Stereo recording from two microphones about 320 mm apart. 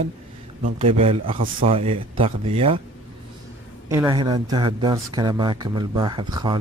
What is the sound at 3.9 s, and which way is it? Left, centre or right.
Speech, centre.